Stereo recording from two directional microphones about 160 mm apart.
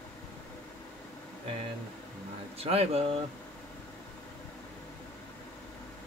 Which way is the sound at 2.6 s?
40° right (ahead or behind).